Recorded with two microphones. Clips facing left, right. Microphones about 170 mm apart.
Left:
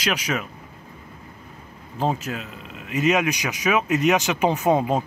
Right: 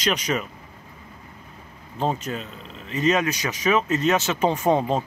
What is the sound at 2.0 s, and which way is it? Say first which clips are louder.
Speech: left 1 dB; 5° left (ahead or behind).